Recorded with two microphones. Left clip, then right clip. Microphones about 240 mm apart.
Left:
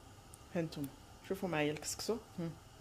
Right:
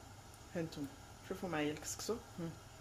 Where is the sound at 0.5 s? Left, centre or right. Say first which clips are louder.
Left 3 dB; left.